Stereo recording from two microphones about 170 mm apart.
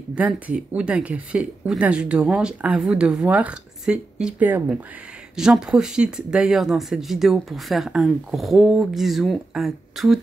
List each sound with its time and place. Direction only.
0.1 s speech: 5° right (ahead or behind)